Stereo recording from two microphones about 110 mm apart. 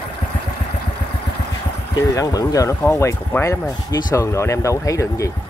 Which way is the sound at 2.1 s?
30° left (ahead or behind).